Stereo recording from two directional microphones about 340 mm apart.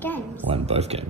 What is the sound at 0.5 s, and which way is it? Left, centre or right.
Speech, centre.